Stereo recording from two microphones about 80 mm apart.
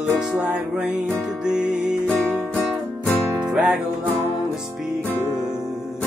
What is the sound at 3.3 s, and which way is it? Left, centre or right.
Music, centre.